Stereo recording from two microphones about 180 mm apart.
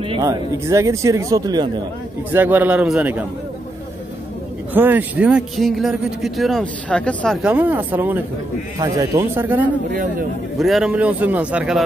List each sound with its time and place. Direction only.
0.0 s speech: 25° right (ahead or behind)
2.3 s speech: 10° right (ahead or behind)
4.7 s a man's voice: 10° right (ahead or behind); by 7.3 s 5° left (ahead or behind)
7.4 s speech: 10° right (ahead or behind)